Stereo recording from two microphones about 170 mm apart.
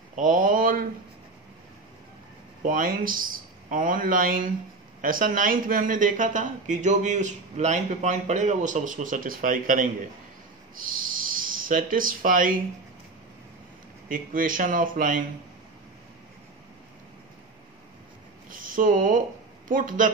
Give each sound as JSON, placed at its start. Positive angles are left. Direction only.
{"t": 0.1, "sound": "speech", "side_deg": -50}
{"t": 2.6, "sound": "speech", "side_deg": -55}
{"t": 14.0, "sound": "speech", "side_deg": -55}
{"t": 18.5, "sound": "a sound", "side_deg": -50}
{"t": 19.7, "sound": "speech", "side_deg": -50}